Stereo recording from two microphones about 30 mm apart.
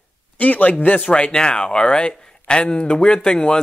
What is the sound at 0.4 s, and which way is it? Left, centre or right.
Speech, left.